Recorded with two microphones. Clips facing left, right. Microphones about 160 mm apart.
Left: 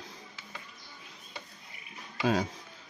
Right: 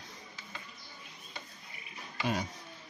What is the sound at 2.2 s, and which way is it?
Speech, 90° left.